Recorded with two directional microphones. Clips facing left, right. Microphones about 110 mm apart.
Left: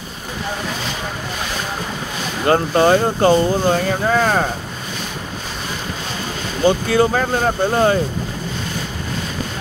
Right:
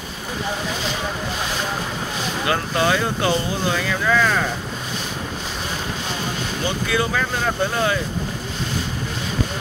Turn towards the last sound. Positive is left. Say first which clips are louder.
# left 5 dB
turn(degrees=40)  # may be behind; listen again after turning